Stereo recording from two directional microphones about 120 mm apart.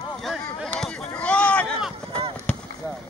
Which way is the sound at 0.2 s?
Centre (ahead or behind).